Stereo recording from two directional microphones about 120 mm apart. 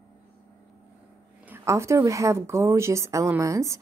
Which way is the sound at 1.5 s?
25° right (ahead or behind).